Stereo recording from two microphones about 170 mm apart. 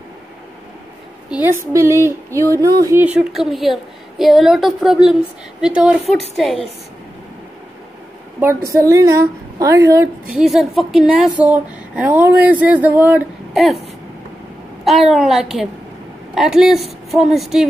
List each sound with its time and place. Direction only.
1.3 s a woman's voice: 15° right (ahead or behind)
3.0 s a woman's voice: 5° right (ahead or behind)
8.4 s a woman's voice: 15° right (ahead or behind)
10.3 s a woman's voice: centre (ahead or behind)
14.9 s a woman's voice: centre (ahead or behind)